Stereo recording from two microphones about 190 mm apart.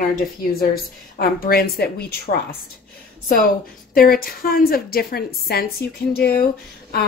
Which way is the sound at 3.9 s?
50° left (ahead or behind).